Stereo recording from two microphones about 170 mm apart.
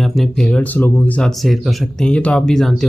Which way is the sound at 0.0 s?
Centre (ahead or behind).